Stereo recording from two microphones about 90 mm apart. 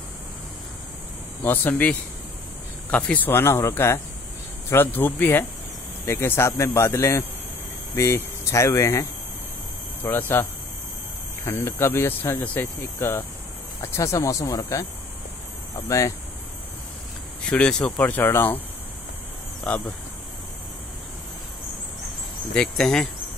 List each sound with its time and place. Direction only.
1.4 s speech: 20° left (ahead or behind)
3.3 s speech: 30° left (ahead or behind)
10.0 s speech: 25° left (ahead or behind)
11.4 s speech: 30° left (ahead or behind)
13.7 s speech: 35° left (ahead or behind)
15.9 s speech: 35° left (ahead or behind)
17.5 s speech: 10° left (ahead or behind)
18.0 s speech: 20° left (ahead or behind)
19.7 s speech: 15° left (ahead or behind)
22.5 s speech: 5° left (ahead or behind)